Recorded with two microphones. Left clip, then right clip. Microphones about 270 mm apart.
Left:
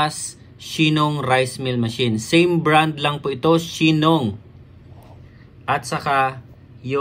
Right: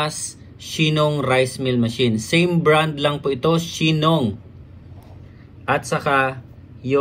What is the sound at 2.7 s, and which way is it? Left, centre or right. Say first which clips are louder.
Speech: even; centre.